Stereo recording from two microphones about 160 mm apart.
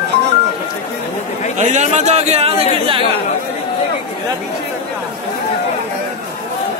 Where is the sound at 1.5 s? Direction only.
50° right (ahead or behind).